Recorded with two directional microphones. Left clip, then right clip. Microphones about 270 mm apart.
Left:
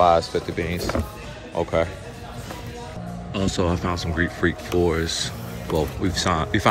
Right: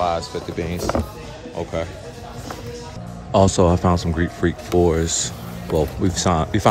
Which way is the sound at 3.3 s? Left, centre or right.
Centre.